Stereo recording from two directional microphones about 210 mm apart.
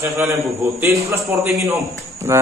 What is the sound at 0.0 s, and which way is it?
Speech, 10° right (ahead or behind).